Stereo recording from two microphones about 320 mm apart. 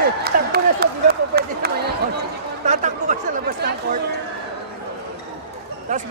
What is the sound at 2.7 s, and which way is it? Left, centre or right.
Chatter, right.